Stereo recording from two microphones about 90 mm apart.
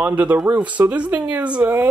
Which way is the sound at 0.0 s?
20° right (ahead or behind).